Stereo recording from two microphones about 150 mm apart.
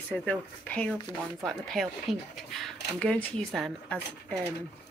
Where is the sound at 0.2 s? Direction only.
10° left (ahead or behind).